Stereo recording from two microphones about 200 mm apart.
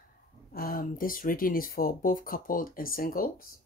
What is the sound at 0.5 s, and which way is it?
Speech, 45° left (ahead or behind).